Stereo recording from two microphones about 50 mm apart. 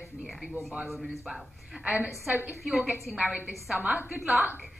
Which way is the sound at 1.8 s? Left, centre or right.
Right.